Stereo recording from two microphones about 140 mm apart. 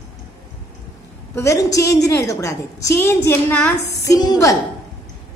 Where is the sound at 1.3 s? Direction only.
20° left (ahead or behind).